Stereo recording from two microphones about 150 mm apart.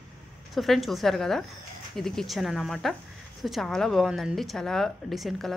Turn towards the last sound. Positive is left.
turn(degrees=0)  # may be behind; listen again after turning